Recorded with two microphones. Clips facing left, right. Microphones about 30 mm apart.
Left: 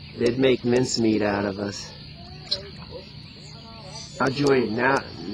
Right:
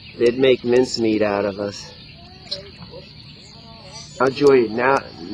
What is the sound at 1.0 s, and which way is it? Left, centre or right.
Speech, centre.